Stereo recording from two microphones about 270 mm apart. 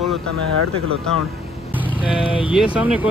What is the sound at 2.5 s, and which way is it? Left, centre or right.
Speech, centre.